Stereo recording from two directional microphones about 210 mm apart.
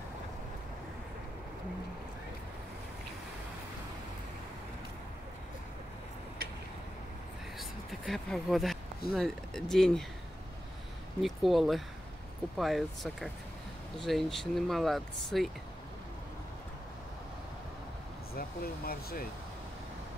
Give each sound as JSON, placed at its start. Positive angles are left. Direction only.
{"t": 7.5, "sound": "a sound", "side_deg": 0}
{"t": 9.1, "sound": "speech", "side_deg": 5}
{"t": 11.1, "sound": "speech", "side_deg": 0}
{"t": 18.3, "sound": "speech", "side_deg": 45}